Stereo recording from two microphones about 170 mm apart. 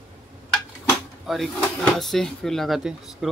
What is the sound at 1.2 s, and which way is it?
Speech, centre (ahead or behind).